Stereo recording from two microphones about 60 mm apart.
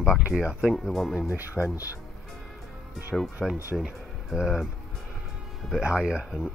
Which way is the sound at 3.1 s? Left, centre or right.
Centre.